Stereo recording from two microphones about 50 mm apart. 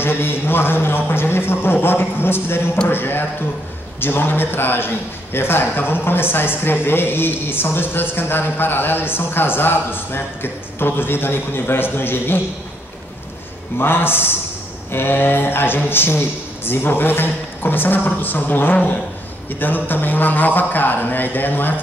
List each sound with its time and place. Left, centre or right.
0.0 s a man's voice: left
13.7 s a man's voice: left